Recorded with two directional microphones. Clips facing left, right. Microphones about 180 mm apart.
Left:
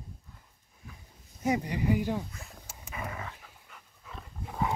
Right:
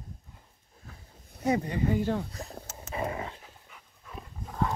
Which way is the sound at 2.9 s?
30° right (ahead or behind).